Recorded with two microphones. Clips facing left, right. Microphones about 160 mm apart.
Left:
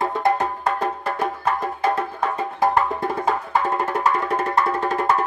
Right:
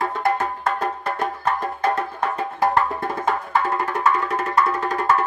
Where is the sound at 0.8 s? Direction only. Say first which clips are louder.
Left 1 dB; 5° left (ahead or behind).